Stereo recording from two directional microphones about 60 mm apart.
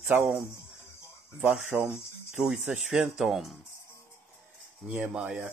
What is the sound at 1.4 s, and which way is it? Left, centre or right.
Speech, right.